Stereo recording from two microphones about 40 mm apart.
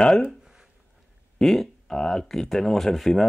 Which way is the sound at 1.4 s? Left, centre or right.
Centre.